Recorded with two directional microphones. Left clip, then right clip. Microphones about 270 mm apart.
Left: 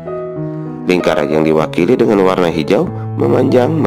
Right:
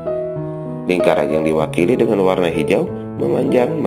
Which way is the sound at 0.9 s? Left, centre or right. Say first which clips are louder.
Left 2 dB; left.